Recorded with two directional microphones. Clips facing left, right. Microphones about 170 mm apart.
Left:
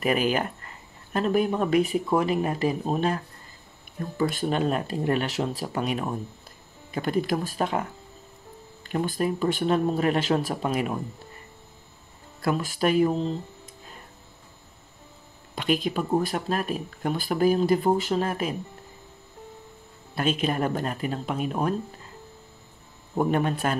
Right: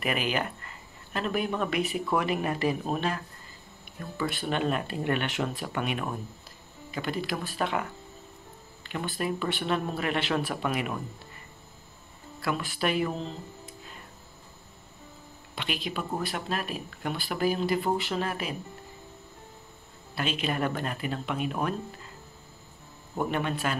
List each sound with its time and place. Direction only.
0.0 s speech: 40° left (ahead or behind)
4.2 s speech: 45° left (ahead or behind)
6.9 s speech: 45° left (ahead or behind)
8.8 s speech: 45° left (ahead or behind)
12.4 s speech: 40° left (ahead or behind)
15.5 s speech: 45° left (ahead or behind)
20.2 s speech: 45° left (ahead or behind)
23.1 s speech: 45° left (ahead or behind)